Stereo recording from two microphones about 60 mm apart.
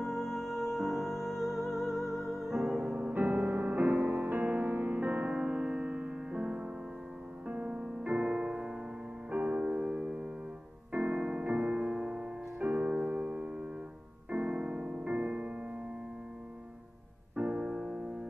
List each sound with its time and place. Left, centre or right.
0.0 s music: centre
2.8 s music: right
10.9 s keyboard: right
11.2 s music: centre
14.3 s piano: right
17.4 s music: right